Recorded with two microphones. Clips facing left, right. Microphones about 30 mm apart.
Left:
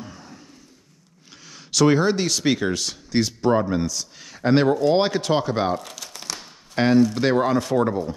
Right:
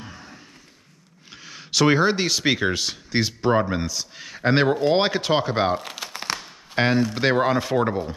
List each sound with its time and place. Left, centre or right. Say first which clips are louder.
0.0 s a sound: left 1 dB; centre
1.4 s speech: left 1 dB; centre
4.7 s crumpling: left 1 dB; right
6.8 s speech: left 3 dB; right